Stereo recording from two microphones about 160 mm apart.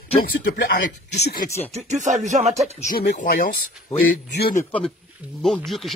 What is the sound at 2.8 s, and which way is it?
Speech, 75° left (ahead or behind).